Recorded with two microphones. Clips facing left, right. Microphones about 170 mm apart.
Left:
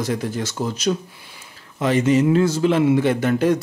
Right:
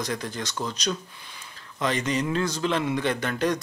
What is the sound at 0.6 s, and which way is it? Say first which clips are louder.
Speech: left 6 dB; 70° left (ahead or behind).